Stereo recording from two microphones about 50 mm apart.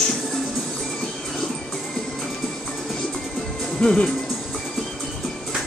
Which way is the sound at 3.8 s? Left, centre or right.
Centre.